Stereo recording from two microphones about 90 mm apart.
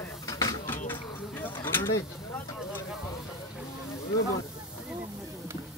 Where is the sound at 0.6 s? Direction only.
25° left (ahead or behind).